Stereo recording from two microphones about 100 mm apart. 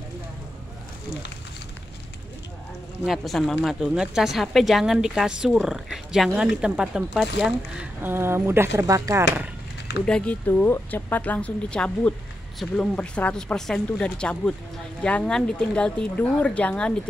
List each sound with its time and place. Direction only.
3.1 s speech: centre (ahead or behind)
8.0 s speech: 25° right (ahead or behind)
10.0 s speech: 10° left (ahead or behind)
10.4 s speech: 20° left (ahead or behind)